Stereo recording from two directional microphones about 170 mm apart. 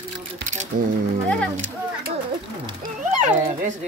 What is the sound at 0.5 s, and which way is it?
Speech, 50° right (ahead or behind).